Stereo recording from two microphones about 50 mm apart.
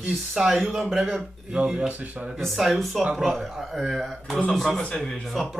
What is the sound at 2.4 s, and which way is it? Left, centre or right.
Speech, centre.